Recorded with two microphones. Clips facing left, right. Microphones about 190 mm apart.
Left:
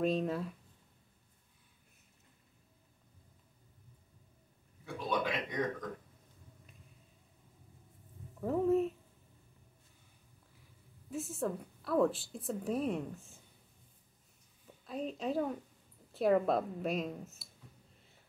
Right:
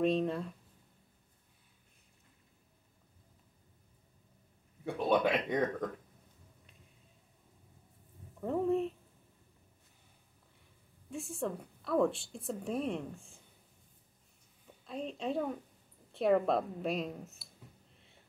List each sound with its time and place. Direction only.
0.0 s a woman's voice: centre (ahead or behind)
4.8 s speech: 60° right (ahead or behind)
8.4 s a sound: centre (ahead or behind)
11.1 s a woman's voice: centre (ahead or behind)
14.9 s a woman's voice: 5° left (ahead or behind)